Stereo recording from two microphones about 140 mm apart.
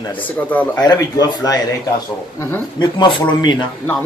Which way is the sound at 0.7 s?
25° left (ahead or behind).